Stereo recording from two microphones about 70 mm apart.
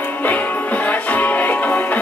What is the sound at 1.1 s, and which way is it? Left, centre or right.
Music, left.